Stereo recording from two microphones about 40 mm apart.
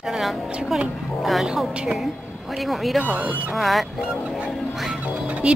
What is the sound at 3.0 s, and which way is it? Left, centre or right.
Speech, right.